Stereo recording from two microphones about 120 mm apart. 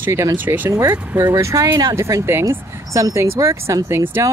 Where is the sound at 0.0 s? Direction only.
25° right (ahead or behind).